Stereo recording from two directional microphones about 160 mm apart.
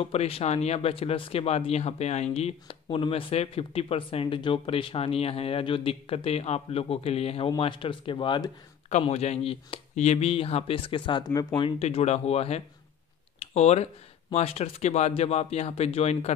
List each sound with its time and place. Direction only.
0.0 s speech: 40° left (ahead or behind)
8.8 s speech: 40° left (ahead or behind)
11.8 s speech: 40° left (ahead or behind)
13.4 s a sound: 40° left (ahead or behind)
14.3 s speech: 40° left (ahead or behind)